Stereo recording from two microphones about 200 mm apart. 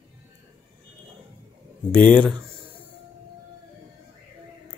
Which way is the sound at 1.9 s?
5° left (ahead or behind).